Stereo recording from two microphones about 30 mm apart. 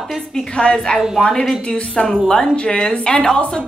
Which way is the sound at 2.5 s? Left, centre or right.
Left.